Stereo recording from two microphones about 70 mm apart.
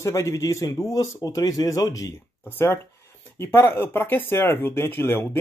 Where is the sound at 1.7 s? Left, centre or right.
Left.